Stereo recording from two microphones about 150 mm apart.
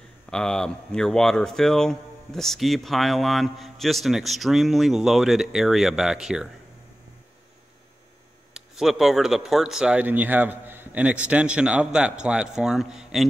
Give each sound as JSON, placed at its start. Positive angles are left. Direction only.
{"t": 0.3, "sound": "speech", "side_deg": 5}
{"t": 8.5, "sound": "speech", "side_deg": 0}